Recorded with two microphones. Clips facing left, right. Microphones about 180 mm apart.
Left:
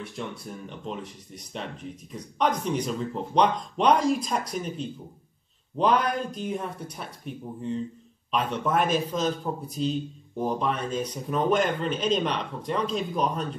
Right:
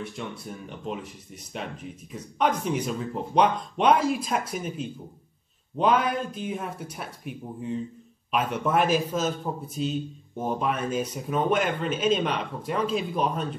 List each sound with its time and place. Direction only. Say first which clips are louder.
0.0 s speech: even; centre (ahead or behind)